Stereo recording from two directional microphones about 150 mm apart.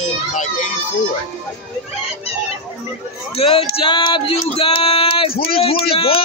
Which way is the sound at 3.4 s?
40° left (ahead or behind).